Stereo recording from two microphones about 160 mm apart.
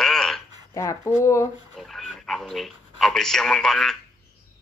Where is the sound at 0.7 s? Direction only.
20° left (ahead or behind).